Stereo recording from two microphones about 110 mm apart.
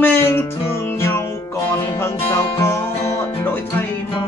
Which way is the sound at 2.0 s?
25° left (ahead or behind).